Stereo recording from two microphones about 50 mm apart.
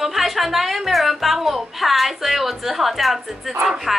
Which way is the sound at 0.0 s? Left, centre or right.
Centre.